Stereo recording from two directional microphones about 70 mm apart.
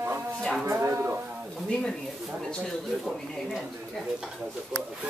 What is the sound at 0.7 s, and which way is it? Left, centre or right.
Speech, right.